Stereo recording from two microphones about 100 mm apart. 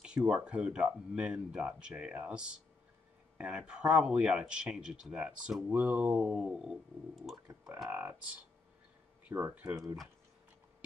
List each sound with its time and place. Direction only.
0.0 s a sound: 10° right (ahead or behind)
0.5 s speech: 10° right (ahead or behind)
7.9 s speech: 20° right (ahead or behind)
9.2 s speech: 15° right (ahead or behind)